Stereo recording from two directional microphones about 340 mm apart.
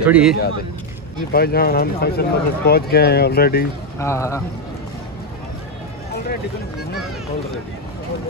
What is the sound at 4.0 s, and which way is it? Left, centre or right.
Speech, centre.